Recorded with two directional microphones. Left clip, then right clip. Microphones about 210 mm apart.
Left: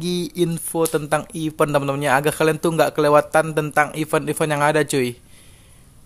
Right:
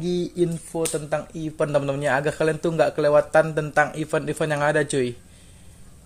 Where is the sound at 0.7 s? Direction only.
25° left (ahead or behind).